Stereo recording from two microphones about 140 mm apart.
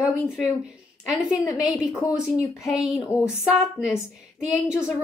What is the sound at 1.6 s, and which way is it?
Speech, 5° right (ahead or behind).